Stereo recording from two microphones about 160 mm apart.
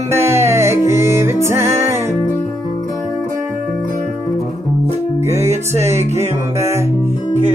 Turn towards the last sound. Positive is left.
turn(degrees=-15)  # may be behind; listen again after turning